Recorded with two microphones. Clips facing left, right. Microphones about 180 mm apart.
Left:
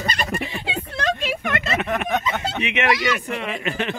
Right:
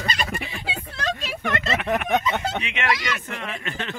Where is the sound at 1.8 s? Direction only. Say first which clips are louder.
Right 4 dB; 15° right (ahead or behind).